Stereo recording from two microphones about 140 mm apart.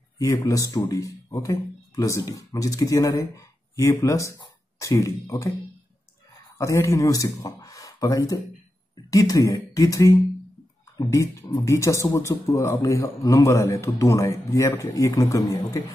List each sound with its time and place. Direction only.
0.4 s speech: 25° left (ahead or behind)
6.6 s speech: 20° left (ahead or behind)